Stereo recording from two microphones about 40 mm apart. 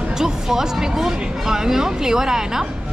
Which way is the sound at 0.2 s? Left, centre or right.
Centre.